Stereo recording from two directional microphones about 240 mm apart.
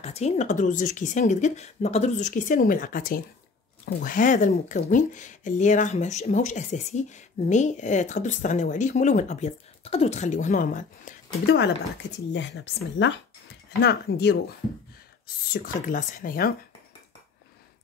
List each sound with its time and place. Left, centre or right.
0.0 s speech: left
12.3 s speech: left
15.5 s speech: left